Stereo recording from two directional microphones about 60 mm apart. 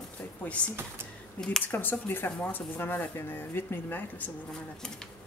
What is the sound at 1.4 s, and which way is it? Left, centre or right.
Speech, centre.